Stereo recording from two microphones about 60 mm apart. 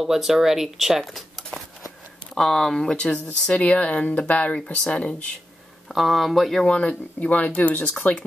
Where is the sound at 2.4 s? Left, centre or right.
Centre.